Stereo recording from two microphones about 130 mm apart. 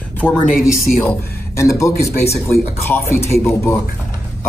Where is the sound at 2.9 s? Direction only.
15° left (ahead or behind).